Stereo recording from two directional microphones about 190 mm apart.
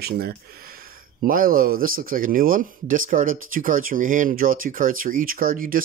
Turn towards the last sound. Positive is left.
turn(degrees=-45)  # may be behind; listen again after turning